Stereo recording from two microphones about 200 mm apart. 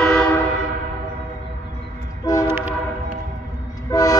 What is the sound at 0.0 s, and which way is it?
Train horn, 5° left (ahead or behind).